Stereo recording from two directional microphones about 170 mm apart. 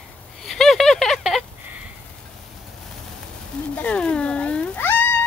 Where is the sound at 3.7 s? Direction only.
5° left (ahead or behind).